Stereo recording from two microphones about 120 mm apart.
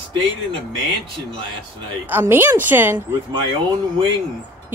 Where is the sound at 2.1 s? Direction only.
20° right (ahead or behind).